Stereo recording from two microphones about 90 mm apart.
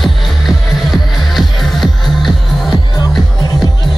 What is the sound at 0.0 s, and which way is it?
Music, centre (ahead or behind).